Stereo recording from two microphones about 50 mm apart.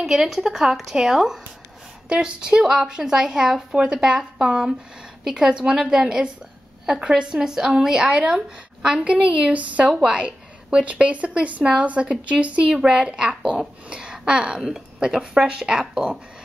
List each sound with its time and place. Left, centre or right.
0.0 s speech: centre
8.1 s a woman's voice: right